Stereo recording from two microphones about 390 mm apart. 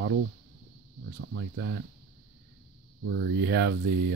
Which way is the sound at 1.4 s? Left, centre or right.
Right.